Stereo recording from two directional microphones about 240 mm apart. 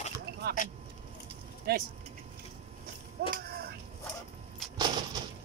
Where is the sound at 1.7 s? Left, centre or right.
Right.